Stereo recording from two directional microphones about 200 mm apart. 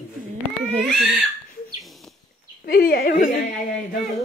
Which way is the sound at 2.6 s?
50° left (ahead or behind).